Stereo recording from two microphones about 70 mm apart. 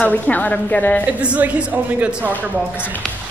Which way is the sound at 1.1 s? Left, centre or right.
Centre.